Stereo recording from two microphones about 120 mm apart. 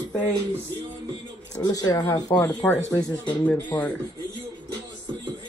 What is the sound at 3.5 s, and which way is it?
Speech, 10° left (ahead or behind).